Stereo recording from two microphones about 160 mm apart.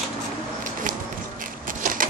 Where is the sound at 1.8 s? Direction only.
60° right (ahead or behind).